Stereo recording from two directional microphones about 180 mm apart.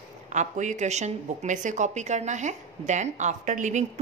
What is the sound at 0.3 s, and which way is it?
A woman's voice, 40° right (ahead or behind).